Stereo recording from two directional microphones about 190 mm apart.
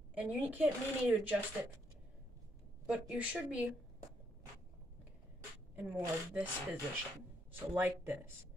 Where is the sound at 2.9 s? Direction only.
5° right (ahead or behind).